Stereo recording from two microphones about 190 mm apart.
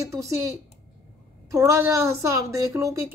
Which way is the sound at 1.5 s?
15° right (ahead or behind).